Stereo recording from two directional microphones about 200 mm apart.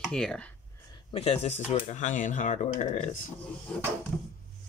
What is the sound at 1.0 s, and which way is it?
Speech, 30° left (ahead or behind).